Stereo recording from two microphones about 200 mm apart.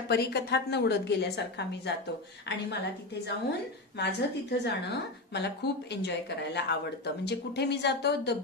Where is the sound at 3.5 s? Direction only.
60° left (ahead or behind).